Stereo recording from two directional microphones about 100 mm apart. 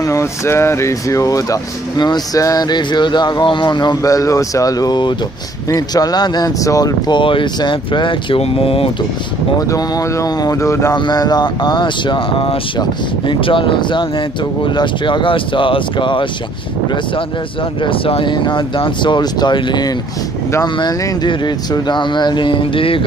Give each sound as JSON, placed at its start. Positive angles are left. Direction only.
{"t": 0.0, "sound": "speech", "side_deg": 30}
{"t": 7.2, "sound": "speech", "side_deg": 55}
{"t": 8.4, "sound": "speech", "side_deg": 70}
{"t": 9.6, "sound": "speech", "side_deg": 35}
{"t": 11.0, "sound": "speech", "side_deg": 45}
{"t": 17.8, "sound": "speech", "side_deg": 65}